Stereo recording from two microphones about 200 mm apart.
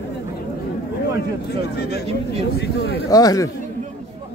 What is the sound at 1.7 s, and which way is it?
Speech, 55° left (ahead or behind).